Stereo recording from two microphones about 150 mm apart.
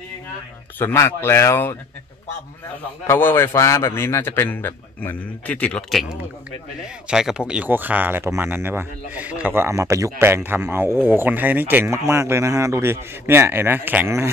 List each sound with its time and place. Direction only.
0.7 s a man's voice: 15° left (ahead or behind)
3.1 s a man's voice: 15° left (ahead or behind); by 14.3 s 15° right (ahead or behind)